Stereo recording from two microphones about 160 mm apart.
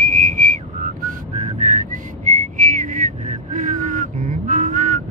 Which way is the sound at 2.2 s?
50° right (ahead or behind).